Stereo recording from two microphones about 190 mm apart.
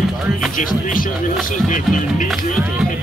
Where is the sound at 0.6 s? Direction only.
45° left (ahead or behind).